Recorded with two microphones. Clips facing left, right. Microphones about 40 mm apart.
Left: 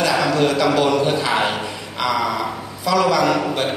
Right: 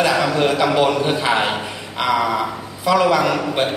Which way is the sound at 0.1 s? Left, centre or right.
Centre.